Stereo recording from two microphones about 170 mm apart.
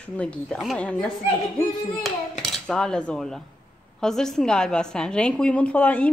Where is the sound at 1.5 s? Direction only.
5° left (ahead or behind).